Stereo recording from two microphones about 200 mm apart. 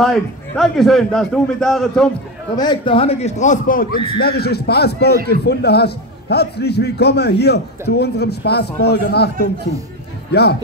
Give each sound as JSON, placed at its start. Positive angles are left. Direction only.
{"t": 0.0, "sound": "a man's voice", "side_deg": 0}
{"t": 2.5, "sound": "a man's voice", "side_deg": 20}